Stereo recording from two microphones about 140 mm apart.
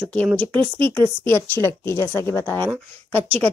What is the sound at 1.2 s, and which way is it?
Speech, 15° left (ahead or behind).